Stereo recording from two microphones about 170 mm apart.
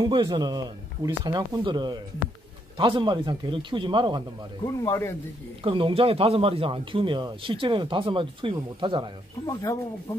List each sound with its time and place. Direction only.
0.0 s speech: 25° right (ahead or behind)
4.6 s speech: 15° left (ahead or behind)
5.6 s speech: 30° right (ahead or behind)
9.5 s speech: 20° left (ahead or behind)